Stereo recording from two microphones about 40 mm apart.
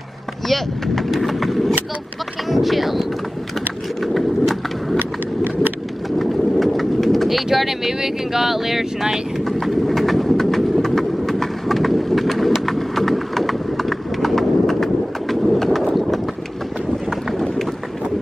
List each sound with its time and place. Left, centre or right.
0.5 s speech: centre
4.9 s a sound: right
6.1 s vehicle: centre
7.5 s speech: centre
9.4 s a sound: centre
12.6 s clip-clop: centre